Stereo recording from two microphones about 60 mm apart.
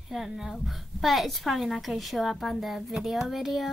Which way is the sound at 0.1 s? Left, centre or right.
Centre.